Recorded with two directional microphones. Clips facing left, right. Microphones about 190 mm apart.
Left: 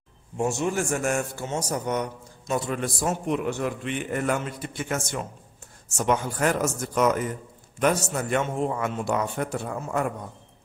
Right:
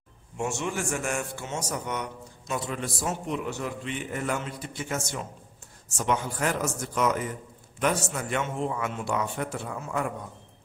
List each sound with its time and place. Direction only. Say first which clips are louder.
0.4 s a man's voice: left 5 dB; 35° left (ahead or behind)
2.8 s a man's voice: left 4 dB; 50° left (ahead or behind)
5.9 s speech: left 3 dB; 45° left (ahead or behind)